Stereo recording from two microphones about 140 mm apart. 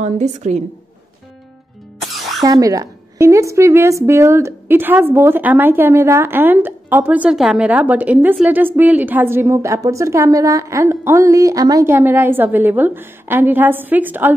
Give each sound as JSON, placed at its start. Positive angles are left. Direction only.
{"t": 0.0, "sound": "a woman's voice", "side_deg": -55}
{"t": 2.0, "sound": "music", "side_deg": 0}
{"t": 2.4, "sound": "a woman's voice", "side_deg": -25}